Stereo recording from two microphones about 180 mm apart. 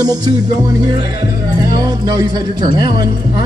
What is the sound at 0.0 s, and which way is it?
Speech, 20° right (ahead or behind).